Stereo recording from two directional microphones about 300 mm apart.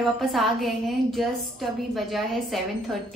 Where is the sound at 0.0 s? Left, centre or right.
Centre.